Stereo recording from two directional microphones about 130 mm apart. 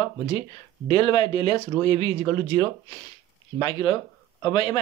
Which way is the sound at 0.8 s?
40° left (ahead or behind).